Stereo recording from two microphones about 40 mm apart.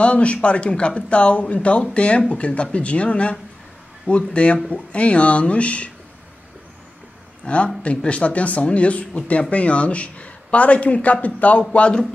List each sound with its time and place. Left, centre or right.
0.0 s speech: left
7.4 s speech: left